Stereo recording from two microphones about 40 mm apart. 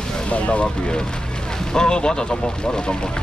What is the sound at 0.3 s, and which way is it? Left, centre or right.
Speech, left.